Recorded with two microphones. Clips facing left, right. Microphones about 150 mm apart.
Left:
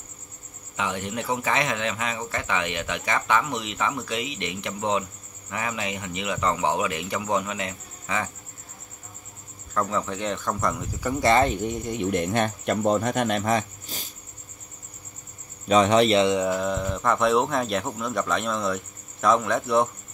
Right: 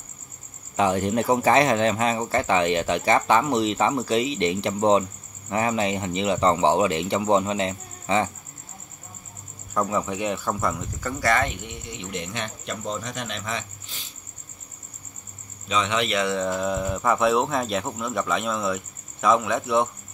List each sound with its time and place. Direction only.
0.7 s speech: 40° right (ahead or behind)
9.8 s speech: 15° right (ahead or behind)
11.1 s speech: 25° left (ahead or behind); by 14.1 s 40° left (ahead or behind)
15.7 s speech: 40° left (ahead or behind)
16.3 s speech: 5° left (ahead or behind)